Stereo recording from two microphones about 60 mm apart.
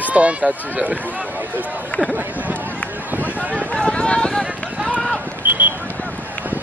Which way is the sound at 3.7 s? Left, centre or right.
Centre.